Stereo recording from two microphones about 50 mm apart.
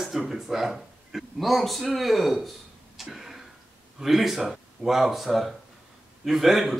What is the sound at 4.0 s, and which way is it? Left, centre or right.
Speech, centre.